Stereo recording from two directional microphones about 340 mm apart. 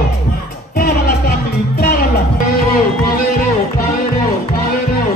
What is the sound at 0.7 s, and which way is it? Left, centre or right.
Music, left.